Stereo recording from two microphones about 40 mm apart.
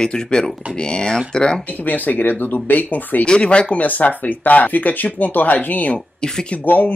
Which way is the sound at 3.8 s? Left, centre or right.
Left.